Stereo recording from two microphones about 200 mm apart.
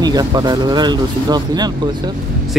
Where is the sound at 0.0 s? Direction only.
20° right (ahead or behind).